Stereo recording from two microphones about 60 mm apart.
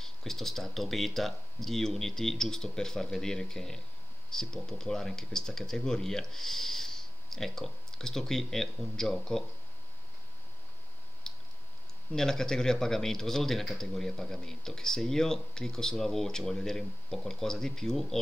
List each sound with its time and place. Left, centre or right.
0.0 s speech: centre
11.3 s clicking: centre
12.1 s speech: centre